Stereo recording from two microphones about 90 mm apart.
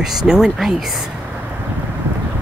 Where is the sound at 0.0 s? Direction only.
5° right (ahead or behind).